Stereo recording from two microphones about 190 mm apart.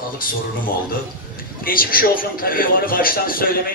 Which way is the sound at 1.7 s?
50° left (ahead or behind).